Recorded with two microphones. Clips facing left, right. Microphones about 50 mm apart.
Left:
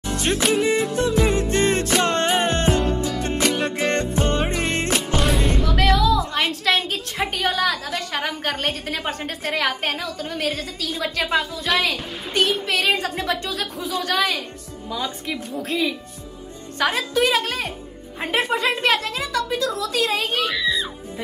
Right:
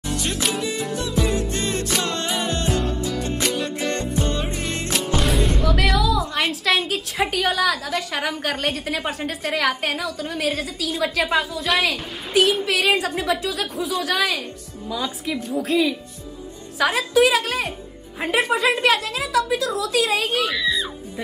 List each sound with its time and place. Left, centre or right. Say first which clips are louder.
0.0 s music: left 3 dB; left
5.1 s music: right 1 dB; centre
7.4 s a woman's voice: right 1 dB; centre